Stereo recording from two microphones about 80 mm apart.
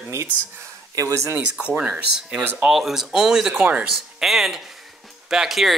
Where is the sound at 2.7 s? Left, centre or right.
Centre.